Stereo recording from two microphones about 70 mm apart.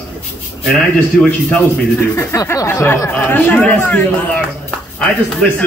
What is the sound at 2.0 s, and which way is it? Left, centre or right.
Speech, left.